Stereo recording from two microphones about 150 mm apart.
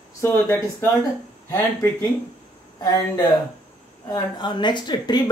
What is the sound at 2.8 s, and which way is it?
Speech, 25° left (ahead or behind).